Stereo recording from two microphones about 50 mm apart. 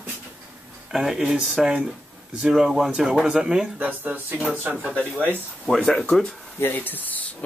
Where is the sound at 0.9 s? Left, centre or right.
Centre.